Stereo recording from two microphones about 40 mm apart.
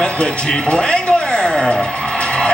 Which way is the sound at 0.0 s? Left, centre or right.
Left.